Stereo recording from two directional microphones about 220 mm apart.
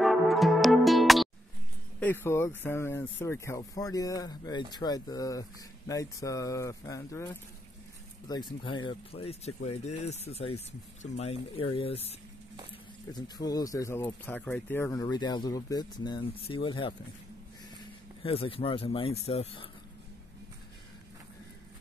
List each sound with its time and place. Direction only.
0.0 s music: centre (ahead or behind)
2.0 s speech: 10° left (ahead or behind)
8.3 s speech: 20° left (ahead or behind)
13.1 s speech: 15° left (ahead or behind)
18.2 s speech: 25° left (ahead or behind)